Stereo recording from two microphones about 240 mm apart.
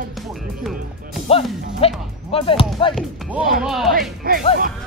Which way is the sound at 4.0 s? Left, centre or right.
Right.